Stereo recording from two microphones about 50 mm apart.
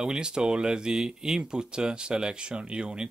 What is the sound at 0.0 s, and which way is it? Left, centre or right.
Speech, centre.